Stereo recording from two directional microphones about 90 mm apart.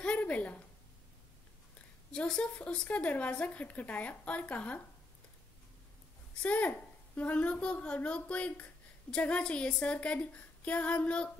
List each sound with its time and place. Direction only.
0.0 s a sound: 15° left (ahead or behind)
2.1 s speech: 10° left (ahead or behind)
6.4 s speech: 15° left (ahead or behind)